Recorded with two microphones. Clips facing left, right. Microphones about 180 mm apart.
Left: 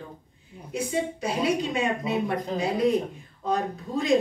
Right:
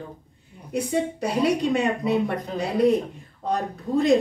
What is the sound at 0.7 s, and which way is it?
A woman's voice, 60° right (ahead or behind).